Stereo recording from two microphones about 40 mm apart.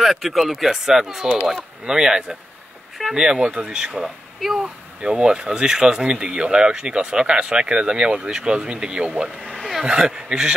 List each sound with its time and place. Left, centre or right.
0.0 s speech: centre; by 4.0 s right
4.0 s speech: centre
5.0 s speech: right
9.8 s speech: centre